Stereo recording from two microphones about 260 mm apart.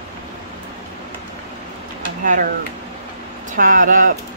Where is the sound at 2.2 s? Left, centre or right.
Right.